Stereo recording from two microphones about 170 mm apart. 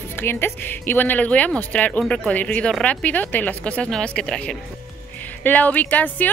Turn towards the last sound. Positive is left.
turn(degrees=10)  # may be behind; listen again after turning